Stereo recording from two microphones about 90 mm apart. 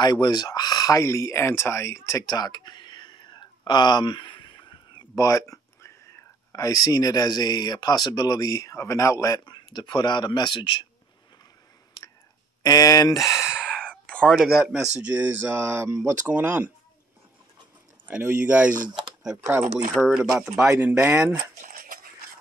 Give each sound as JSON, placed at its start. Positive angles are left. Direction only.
{"t": 0.0, "sound": "speech", "side_deg": 50}
{"t": 2.2, "sound": "speech", "side_deg": 50}
{"t": 9.4, "sound": "a man's voice", "side_deg": 55}
{"t": 12.6, "sound": "speech", "side_deg": 45}
{"t": 13.4, "sound": "a sound", "side_deg": -10}
{"t": 14.0, "sound": "a sound", "side_deg": 15}
{"t": 14.6, "sound": "speech", "side_deg": -5}
{"t": 18.0, "sound": "speech", "side_deg": -15}
{"t": 19.3, "sound": "speech", "side_deg": -25}
{"t": 19.9, "sound": "speech", "side_deg": -10}
{"t": 20.9, "sound": "speech", "side_deg": -30}